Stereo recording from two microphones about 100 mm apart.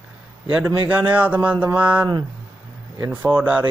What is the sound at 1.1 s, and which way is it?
Speech, 15° right (ahead or behind).